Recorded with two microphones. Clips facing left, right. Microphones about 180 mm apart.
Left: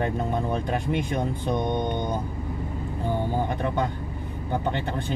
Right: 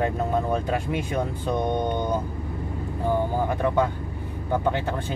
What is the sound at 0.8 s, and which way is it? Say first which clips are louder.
Speech: left 1 dB; 5° right (ahead or behind).